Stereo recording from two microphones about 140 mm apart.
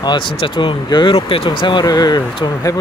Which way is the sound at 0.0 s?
35° left (ahead or behind).